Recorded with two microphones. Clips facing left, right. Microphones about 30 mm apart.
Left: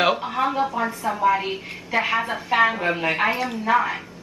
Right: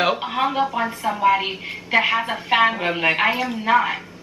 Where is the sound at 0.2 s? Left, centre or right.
Right.